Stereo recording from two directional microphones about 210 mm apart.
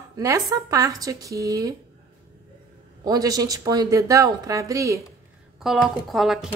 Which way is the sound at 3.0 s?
15° right (ahead or behind).